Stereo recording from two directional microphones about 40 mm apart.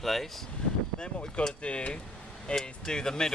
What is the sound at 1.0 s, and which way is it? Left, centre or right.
Speech, left.